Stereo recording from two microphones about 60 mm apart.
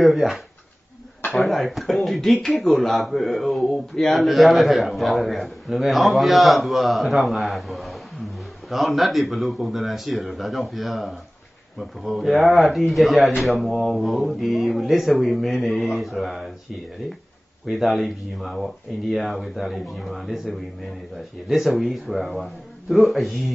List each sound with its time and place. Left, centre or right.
0.0 s speech: centre
17.6 s speech: centre